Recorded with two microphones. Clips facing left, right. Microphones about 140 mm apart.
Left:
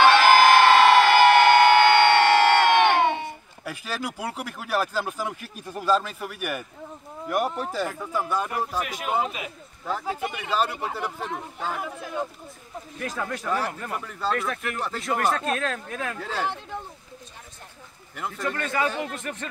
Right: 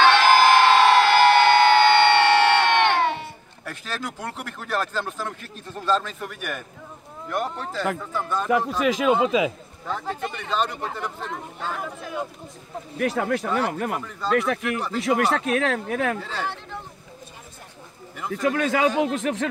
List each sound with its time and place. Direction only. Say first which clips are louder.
0.0 s crowd: even; 10° left (ahead or behind)
2.1 s speech: even; 10° left (ahead or behind)
8.5 s speech: right 8 dB; 90° right
9.8 s speech: even; 5° left (ahead or behind)
13.0 s speech: right 7 dB; 65° right (ahead or behind)
13.9 s speech: right 1 dB; centre (ahead or behind)
15.0 s speech: right 4 dB; 75° right (ahead or behind)
16.2 s speech: left 1 dB; 10° left (ahead or behind)
18.4 s speech: right 6 dB; 90° right